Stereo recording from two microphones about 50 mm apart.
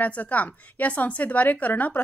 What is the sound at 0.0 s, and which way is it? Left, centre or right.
A woman's voice, left.